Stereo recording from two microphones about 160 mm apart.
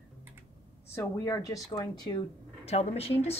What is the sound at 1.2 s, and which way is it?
Speech, 20° left (ahead or behind).